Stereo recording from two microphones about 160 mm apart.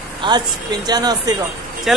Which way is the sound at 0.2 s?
25° right (ahead or behind).